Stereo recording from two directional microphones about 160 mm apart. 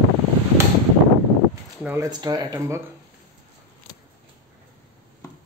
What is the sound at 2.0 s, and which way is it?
Speech, 25° right (ahead or behind).